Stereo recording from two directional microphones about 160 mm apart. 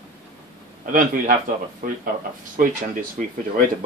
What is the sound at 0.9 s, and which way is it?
Speech, 55° right (ahead or behind).